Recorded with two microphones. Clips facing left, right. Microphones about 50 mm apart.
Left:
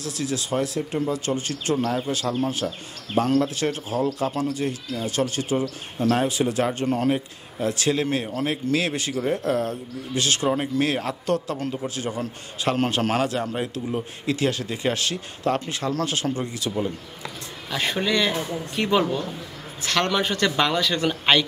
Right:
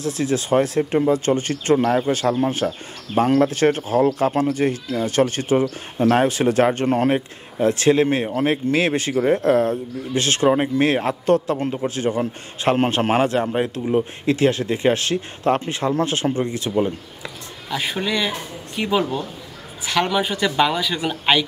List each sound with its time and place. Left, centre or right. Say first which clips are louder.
0.0 s speech: right 6 dB; right
17.6 s speech: right 1 dB; centre